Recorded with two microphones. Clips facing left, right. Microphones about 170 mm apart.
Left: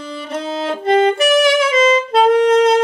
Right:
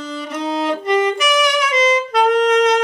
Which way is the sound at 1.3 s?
25° left (ahead or behind).